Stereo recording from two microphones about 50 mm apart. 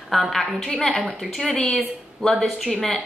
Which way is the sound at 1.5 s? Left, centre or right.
Left.